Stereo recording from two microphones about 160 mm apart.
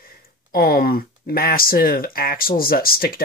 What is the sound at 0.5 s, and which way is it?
Speech, 70° left (ahead or behind).